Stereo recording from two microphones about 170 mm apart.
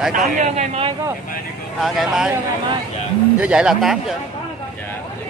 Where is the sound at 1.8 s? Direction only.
Centre (ahead or behind).